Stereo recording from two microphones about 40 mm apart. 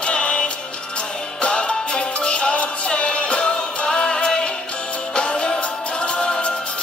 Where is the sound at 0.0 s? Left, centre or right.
Left.